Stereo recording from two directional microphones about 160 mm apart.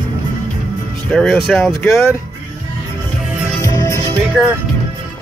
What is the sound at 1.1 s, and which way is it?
Speech, 5° left (ahead or behind).